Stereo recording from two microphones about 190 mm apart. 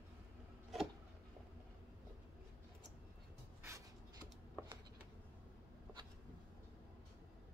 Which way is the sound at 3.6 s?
15° right (ahead or behind).